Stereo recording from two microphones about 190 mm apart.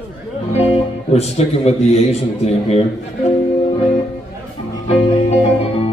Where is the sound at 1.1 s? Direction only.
35° left (ahead or behind).